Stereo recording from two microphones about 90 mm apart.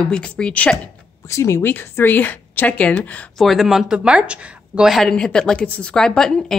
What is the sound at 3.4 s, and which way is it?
A woman's voice, centre (ahead or behind).